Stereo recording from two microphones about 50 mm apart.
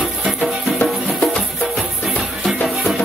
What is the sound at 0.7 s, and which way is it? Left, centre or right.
Music, left.